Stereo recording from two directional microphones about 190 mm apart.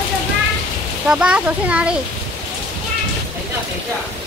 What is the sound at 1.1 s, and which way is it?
Speech, 5° right (ahead or behind).